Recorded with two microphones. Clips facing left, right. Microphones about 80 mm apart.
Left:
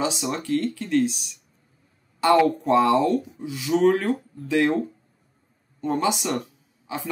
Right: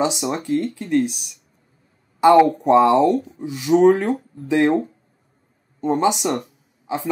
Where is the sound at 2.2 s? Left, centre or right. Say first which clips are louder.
Right 6 dB; centre.